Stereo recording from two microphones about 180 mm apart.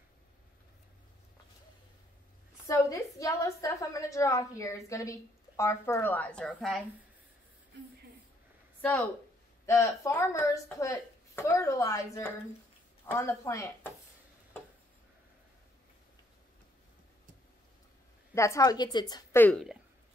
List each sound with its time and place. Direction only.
2.6 s a woman's voice: 15° left (ahead or behind)
8.8 s a woman's voice: 10° left (ahead or behind)
18.3 s a woman's voice: 15° left (ahead or behind)
19.4 s speech: centre (ahead or behind)